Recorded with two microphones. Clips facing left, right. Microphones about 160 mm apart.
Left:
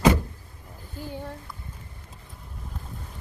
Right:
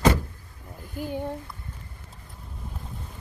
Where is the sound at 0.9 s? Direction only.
15° right (ahead or behind).